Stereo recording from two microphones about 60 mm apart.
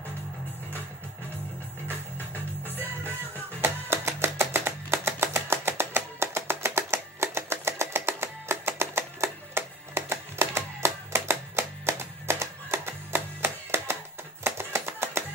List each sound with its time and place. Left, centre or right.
3.6 s music: right